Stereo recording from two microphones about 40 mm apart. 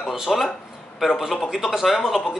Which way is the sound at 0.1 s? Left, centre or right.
Centre.